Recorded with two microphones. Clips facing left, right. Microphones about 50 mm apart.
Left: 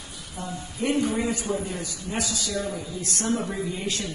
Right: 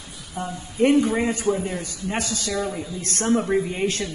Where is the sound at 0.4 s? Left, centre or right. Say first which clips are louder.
Right 9 dB; right.